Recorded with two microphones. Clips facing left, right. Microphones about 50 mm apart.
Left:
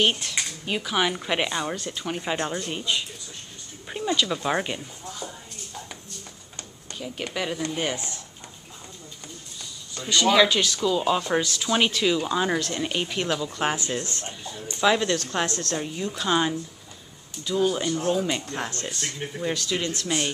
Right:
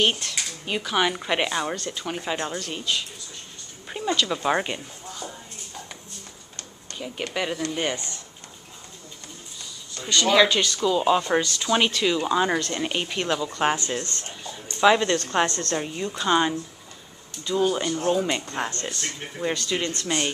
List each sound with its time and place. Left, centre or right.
0.0 s speech: centre
2.7 s speech: centre
3.9 s speech: centre
6.9 s a sound: centre
7.7 s speech: centre
9.9 s speech: centre
13.7 s speech: centre
14.8 s speech: centre
18.7 s speech: centre